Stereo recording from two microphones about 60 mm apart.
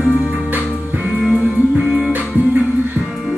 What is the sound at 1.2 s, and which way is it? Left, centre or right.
Music, centre.